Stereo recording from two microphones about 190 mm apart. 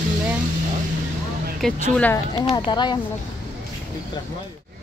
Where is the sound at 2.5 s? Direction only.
25° left (ahead or behind).